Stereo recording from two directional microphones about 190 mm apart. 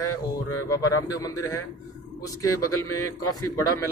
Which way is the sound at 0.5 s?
15° left (ahead or behind).